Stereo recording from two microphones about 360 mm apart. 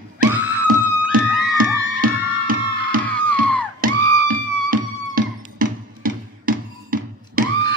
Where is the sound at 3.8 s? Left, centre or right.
Right.